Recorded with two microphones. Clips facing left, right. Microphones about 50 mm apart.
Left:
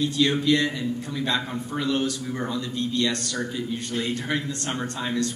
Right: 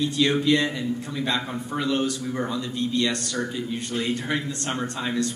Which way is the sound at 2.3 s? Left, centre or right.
Centre.